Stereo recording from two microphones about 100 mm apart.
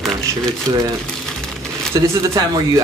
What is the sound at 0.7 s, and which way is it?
Speech, 30° right (ahead or behind).